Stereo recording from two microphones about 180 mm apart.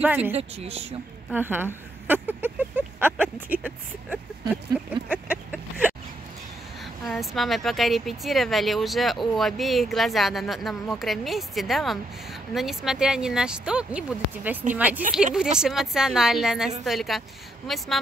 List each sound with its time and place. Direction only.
0.0 s speech: 10° right (ahead or behind)
0.3 s speech: 35° right (ahead or behind)
1.3 s speech: 10° right (ahead or behind)
5.1 s a sound: 10° right (ahead or behind)
7.1 s speech: centre (ahead or behind)